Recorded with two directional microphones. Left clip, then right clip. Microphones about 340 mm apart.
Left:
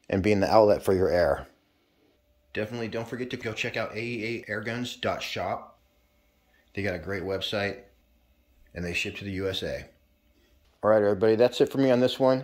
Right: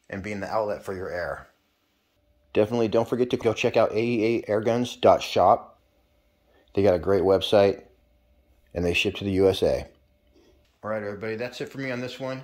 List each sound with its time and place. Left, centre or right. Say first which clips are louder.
0.0 s speech: left 9 dB; left
2.5 s speech: right 10 dB; centre
6.7 s speech: right 11 dB; centre
8.7 s speech: right 7 dB; right
10.8 s speech: left 9 dB; centre